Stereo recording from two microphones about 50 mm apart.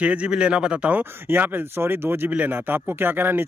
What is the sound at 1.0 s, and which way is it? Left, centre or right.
Speech, right.